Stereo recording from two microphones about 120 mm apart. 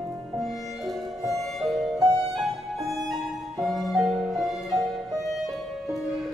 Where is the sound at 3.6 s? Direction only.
Centre (ahead or behind).